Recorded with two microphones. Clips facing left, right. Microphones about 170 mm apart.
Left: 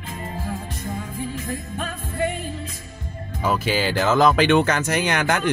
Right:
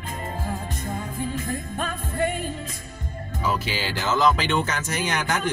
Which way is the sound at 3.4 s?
50° left (ahead or behind).